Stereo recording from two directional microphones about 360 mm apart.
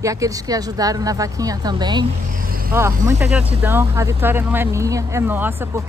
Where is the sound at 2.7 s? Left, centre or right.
Centre.